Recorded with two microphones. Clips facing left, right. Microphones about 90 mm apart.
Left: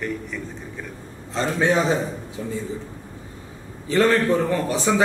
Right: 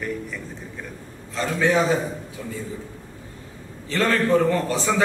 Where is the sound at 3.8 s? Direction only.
20° left (ahead or behind).